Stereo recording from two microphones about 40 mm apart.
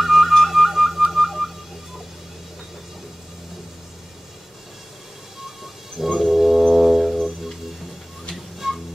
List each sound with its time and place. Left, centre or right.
0.0 s music: centre
6.1 s music: centre
8.6 s music: centre